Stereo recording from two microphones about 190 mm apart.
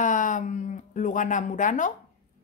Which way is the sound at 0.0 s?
40° left (ahead or behind).